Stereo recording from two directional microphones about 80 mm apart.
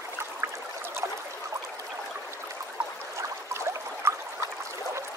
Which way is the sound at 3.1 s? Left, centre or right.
Right.